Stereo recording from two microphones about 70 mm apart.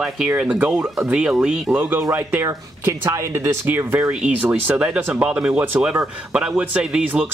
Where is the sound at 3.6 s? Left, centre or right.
Right; by 7.2 s centre.